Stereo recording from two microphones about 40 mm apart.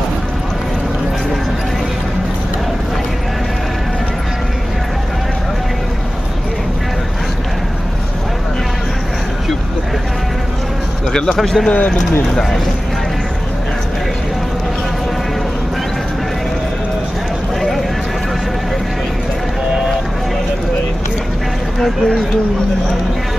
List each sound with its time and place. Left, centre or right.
11.4 s speech: centre
17.6 s run: centre
21.7 s speech: centre